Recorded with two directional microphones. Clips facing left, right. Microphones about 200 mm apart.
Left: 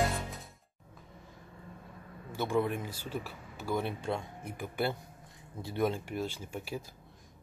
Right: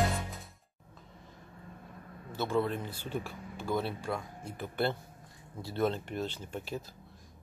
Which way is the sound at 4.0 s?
25° left (ahead or behind).